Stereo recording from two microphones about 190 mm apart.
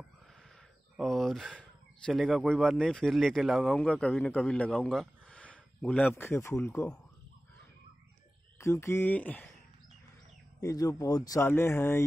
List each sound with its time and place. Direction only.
0.9 s speech: centre (ahead or behind)
8.5 s speech: 15° left (ahead or behind)
10.6 s speech: 15° left (ahead or behind)